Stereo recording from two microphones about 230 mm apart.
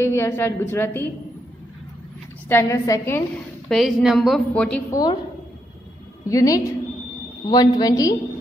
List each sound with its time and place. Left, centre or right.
0.0 s a woman's voice: centre
2.4 s a woman's voice: centre
6.2 s a woman's voice: centre